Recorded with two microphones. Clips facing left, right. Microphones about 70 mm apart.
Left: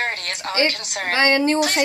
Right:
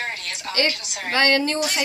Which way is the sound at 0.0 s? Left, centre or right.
Left.